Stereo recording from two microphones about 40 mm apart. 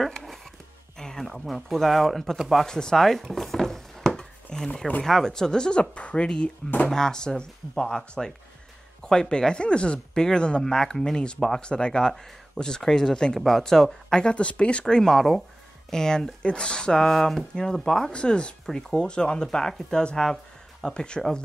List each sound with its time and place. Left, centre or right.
0.0 s a sound: centre
0.9 s speech: centre
2.6 s speech: centre
3.0 s speech: centre
3.3 s a sound: centre
5.0 s speech: centre
9.0 s speech: centre
14.3 s speech: left
15.0 s speech: centre
16.4 s speech: left
18.1 s speech: left
20.0 s speech: left